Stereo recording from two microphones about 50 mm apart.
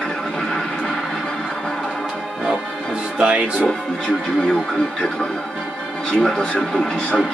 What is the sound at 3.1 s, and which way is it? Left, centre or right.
Speech, right.